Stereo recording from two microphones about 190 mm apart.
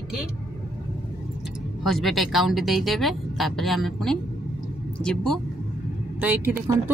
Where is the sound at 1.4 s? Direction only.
Centre (ahead or behind).